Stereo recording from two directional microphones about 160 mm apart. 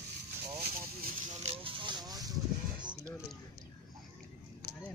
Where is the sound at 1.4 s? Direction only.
30° right (ahead or behind).